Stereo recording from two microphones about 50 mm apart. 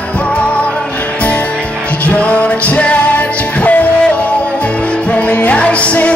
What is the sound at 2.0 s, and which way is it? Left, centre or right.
Music, left.